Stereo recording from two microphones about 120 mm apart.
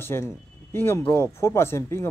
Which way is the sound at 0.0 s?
20° left (ahead or behind).